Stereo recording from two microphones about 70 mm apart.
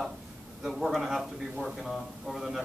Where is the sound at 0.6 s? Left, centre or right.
Centre.